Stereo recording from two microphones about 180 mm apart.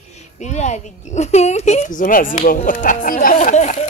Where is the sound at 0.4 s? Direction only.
40° left (ahead or behind).